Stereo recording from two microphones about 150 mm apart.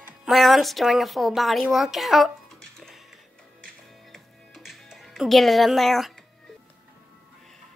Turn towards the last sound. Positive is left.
turn(degrees=0)  # may be behind; listen again after turning